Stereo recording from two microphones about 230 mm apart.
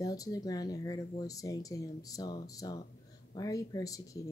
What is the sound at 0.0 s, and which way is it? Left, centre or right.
Speech, centre.